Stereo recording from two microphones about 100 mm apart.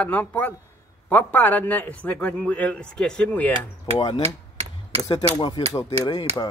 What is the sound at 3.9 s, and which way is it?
Speech, 50° left (ahead or behind).